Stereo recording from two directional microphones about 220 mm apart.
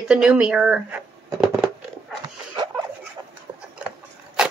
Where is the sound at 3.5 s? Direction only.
20° right (ahead or behind).